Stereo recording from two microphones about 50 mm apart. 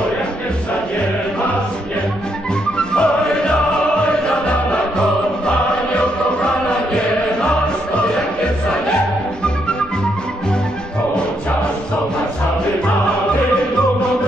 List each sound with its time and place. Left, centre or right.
2.9 s music: centre